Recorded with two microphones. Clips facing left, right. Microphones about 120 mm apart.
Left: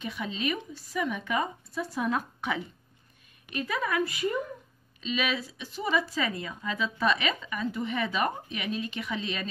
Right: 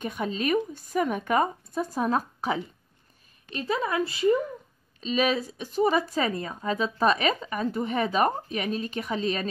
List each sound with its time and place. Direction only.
0.0 s speech: 45° right (ahead or behind); by 4.4 s 30° right (ahead or behind)
5.0 s speech: 40° right (ahead or behind)